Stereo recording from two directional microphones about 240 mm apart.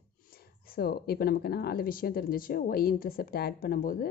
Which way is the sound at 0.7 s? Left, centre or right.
Left.